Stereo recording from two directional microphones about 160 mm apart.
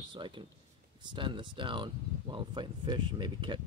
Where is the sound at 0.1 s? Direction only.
30° right (ahead or behind).